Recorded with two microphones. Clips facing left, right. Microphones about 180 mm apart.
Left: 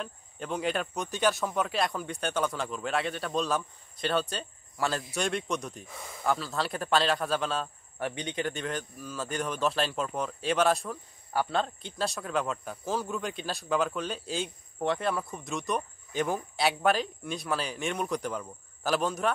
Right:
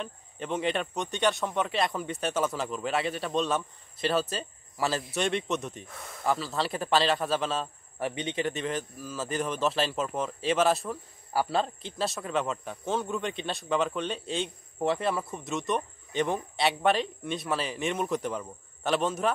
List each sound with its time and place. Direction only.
0.0 s speech: centre (ahead or behind)